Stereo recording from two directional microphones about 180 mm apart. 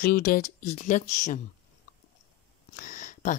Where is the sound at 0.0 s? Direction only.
55° left (ahead or behind).